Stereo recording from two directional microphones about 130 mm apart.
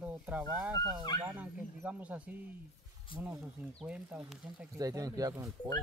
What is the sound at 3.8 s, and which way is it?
Speech, 10° right (ahead or behind).